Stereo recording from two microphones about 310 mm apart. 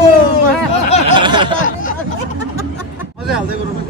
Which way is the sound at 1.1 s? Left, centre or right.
Centre.